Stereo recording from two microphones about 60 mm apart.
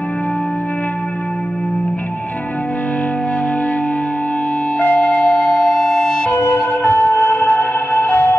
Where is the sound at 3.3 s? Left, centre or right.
Left.